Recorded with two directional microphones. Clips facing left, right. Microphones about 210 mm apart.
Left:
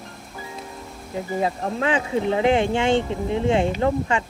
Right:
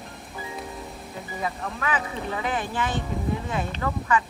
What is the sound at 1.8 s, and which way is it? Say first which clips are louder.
Speech: left 8 dB; 25° left (ahead or behind).